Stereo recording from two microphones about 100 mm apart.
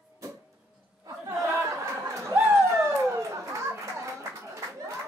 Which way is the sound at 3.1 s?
30° right (ahead or behind).